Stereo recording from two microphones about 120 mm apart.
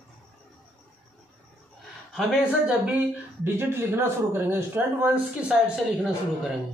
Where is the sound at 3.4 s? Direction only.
20° right (ahead or behind).